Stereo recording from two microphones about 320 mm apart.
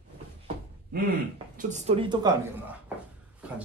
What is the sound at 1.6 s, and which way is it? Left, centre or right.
Speech, right.